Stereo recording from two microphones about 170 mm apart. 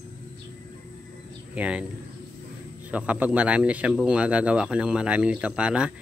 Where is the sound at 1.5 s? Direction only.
5° right (ahead or behind).